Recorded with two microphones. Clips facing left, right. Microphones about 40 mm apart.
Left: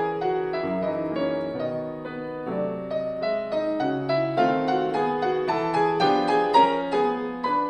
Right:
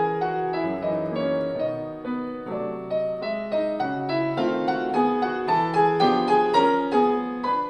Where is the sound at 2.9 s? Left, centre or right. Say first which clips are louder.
Right 2 dB; centre.